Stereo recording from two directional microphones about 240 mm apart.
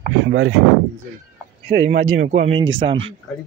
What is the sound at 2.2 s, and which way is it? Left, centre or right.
Speech, right.